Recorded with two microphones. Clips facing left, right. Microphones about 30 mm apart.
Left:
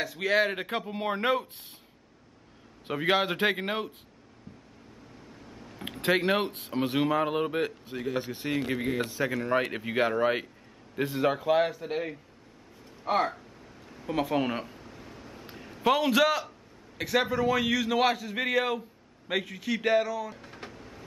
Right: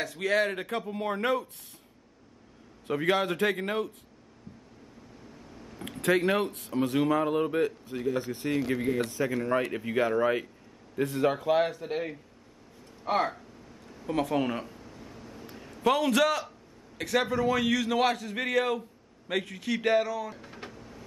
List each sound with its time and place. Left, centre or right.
0.0 s a man's voice: centre
0.7 s speech: left
3.1 s speech: left
5.3 s a sound: centre
5.9 s a man's voice: left
11.2 s a man's voice: centre
13.8 s a sound: centre
15.5 s a man's voice: centre